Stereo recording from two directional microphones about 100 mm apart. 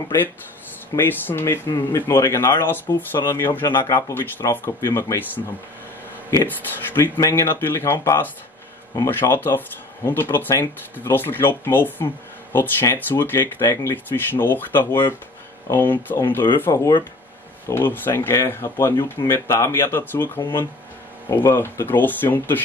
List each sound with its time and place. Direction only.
0.9 s speech: 20° left (ahead or behind)